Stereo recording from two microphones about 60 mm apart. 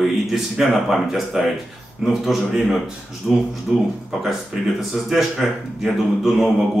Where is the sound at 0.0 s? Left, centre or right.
Centre.